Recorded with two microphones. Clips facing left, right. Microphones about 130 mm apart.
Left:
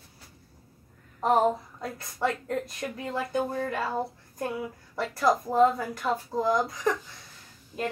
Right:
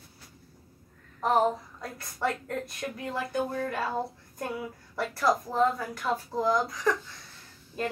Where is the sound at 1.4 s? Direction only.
20° left (ahead or behind).